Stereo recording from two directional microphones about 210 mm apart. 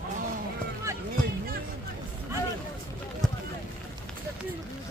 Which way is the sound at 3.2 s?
5° left (ahead or behind).